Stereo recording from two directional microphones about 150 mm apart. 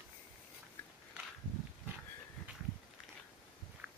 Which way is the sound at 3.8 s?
5° right (ahead or behind).